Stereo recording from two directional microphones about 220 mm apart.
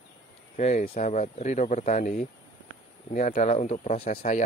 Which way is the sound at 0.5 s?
35° left (ahead or behind).